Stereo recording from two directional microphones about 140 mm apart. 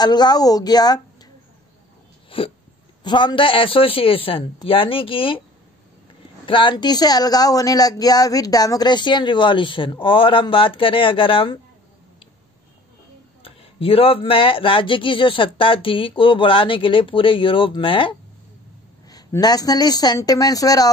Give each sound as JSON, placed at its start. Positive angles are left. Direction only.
{"t": 0.0, "sound": "a woman's voice", "side_deg": 30}
{"t": 2.2, "sound": "hiccup", "side_deg": 40}
{"t": 3.0, "sound": "speech", "side_deg": 30}
{"t": 6.4, "sound": "speech", "side_deg": 35}
{"t": 13.4, "sound": "speech", "side_deg": 45}
{"t": 19.0, "sound": "speech", "side_deg": 25}